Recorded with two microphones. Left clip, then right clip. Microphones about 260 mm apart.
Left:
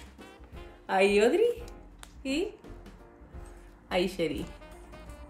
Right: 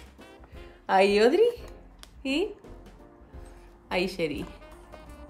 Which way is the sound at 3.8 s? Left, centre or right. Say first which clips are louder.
Right 1 dB; centre.